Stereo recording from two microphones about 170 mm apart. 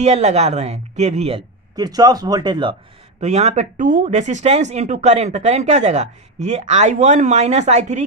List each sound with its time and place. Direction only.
0.0 s a woman's voice: 40° right (ahead or behind)
1.8 s speech: 25° right (ahead or behind)
3.2 s speech: 40° right (ahead or behind)